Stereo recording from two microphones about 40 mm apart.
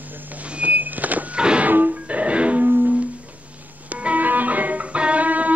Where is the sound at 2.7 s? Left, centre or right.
Right.